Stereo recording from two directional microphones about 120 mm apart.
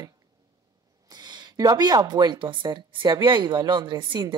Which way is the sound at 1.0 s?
35° right (ahead or behind).